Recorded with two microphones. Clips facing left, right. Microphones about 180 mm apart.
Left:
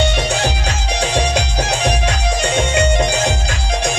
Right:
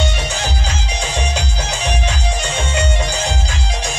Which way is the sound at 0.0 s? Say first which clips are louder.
Left 5 dB; 65° left (ahead or behind).